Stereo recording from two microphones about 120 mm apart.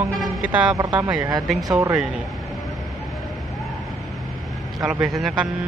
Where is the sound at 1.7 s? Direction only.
25° right (ahead or behind).